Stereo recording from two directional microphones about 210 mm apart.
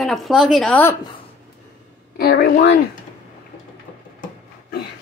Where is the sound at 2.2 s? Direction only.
50° left (ahead or behind).